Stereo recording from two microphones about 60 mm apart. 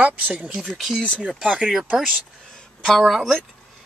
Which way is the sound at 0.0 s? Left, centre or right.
Right.